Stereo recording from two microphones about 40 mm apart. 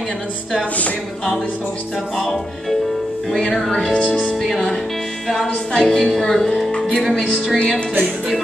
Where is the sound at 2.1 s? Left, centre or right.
Centre.